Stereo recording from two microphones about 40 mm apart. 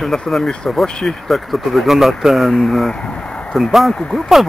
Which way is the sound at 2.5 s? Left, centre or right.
Centre.